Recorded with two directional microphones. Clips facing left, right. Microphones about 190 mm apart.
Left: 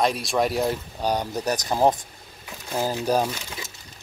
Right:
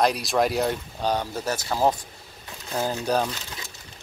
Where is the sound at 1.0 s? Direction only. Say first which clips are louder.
Left 1 dB; 15° left (ahead or behind).